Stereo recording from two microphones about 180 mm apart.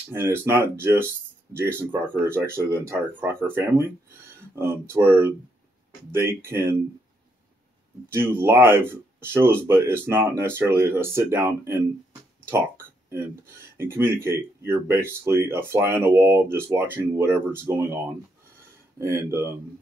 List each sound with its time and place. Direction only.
0.1 s speech: 15° right (ahead or behind)
8.1 s speech: 15° right (ahead or behind)